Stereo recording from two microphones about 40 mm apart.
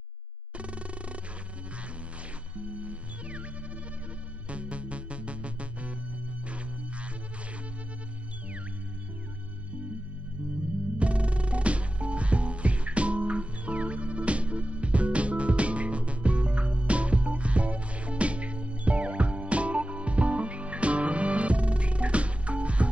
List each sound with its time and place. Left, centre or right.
0.6 s a sound: right
2.5 s music: right
4.5 s music: right
10.4 s music: centre
11.0 s music: right